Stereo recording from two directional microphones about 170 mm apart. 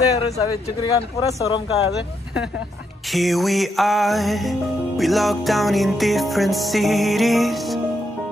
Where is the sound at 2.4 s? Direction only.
Centre (ahead or behind).